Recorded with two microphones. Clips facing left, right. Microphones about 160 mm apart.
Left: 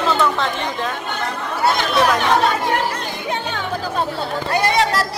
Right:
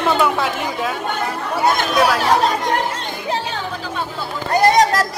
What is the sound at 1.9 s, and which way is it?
Speech, 5° right (ahead or behind).